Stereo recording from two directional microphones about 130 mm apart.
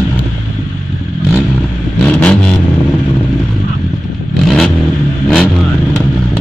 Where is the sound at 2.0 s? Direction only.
10° left (ahead or behind).